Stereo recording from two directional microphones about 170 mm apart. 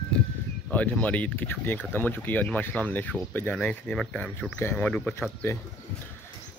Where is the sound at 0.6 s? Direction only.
5° left (ahead or behind).